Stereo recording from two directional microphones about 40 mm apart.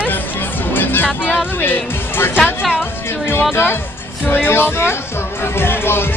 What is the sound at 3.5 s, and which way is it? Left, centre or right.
Speech, left.